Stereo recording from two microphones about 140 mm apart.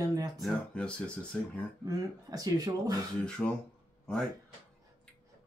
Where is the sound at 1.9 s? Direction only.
25° right (ahead or behind).